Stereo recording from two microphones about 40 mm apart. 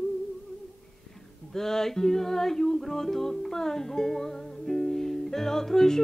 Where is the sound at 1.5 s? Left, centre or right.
Centre.